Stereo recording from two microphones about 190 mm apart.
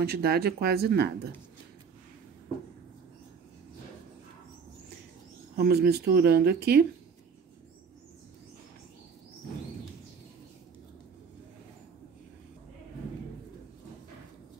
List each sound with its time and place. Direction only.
0.0 s speech: 55° right (ahead or behind)
5.6 s speech: 55° right (ahead or behind)